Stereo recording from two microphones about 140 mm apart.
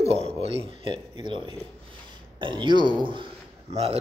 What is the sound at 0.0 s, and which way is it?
A man's voice, 45° right (ahead or behind).